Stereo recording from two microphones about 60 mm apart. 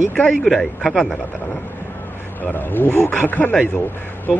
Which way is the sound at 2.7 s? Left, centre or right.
Left.